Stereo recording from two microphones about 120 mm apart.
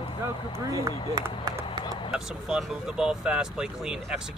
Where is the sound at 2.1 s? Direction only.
5° right (ahead or behind).